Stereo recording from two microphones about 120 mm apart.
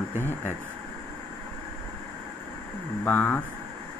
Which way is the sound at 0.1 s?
20° left (ahead or behind).